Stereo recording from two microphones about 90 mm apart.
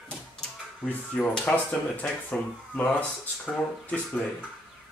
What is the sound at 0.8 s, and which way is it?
Speech, 15° left (ahead or behind).